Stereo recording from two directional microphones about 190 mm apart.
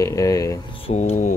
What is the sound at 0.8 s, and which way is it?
Speech, 35° left (ahead or behind).